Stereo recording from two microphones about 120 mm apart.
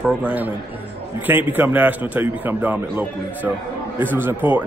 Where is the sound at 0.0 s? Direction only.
10° right (ahead or behind).